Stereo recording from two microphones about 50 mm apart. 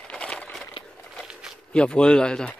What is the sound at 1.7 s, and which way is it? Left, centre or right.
Speech, centre.